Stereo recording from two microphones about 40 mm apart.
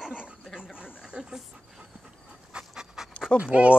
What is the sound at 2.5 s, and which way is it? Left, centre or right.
Pant, centre.